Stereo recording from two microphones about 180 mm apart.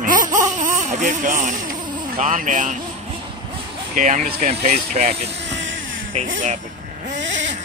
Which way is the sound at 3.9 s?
45° right (ahead or behind).